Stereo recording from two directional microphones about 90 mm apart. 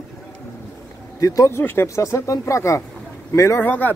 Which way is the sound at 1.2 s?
40° left (ahead or behind).